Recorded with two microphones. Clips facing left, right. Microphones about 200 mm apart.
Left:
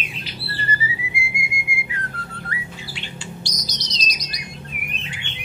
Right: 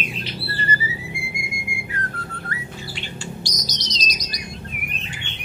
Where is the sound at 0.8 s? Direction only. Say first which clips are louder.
Even; 40° right (ahead or behind).